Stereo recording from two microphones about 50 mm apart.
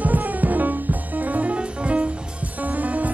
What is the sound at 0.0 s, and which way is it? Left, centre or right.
Music, right.